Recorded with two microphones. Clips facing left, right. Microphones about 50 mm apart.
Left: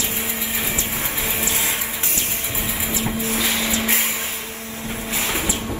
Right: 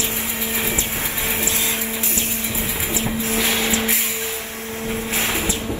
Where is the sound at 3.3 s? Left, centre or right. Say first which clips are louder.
Right 4 dB; right.